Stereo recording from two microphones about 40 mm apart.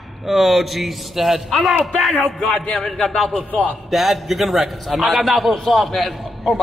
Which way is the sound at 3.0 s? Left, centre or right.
Centre.